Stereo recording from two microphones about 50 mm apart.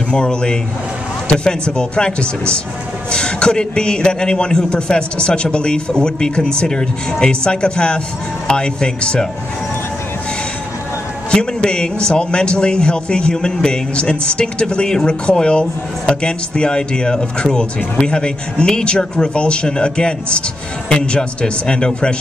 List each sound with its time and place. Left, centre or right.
0.1 s a man's voice: centre
11.2 s a man's voice: centre